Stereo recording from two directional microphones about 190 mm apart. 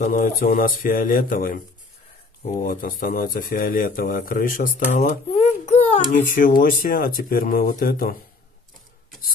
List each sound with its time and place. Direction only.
0.0 s a child's voice: 45° left (ahead or behind)